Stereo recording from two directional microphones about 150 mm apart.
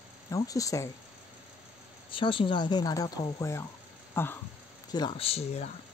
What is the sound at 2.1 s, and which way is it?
A woman's voice, 35° left (ahead or behind).